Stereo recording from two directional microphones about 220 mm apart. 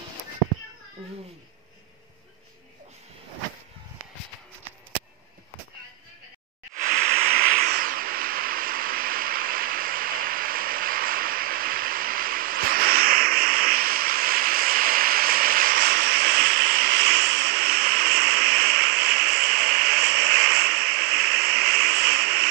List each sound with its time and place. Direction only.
6.7 s hiss: 35° right (ahead or behind)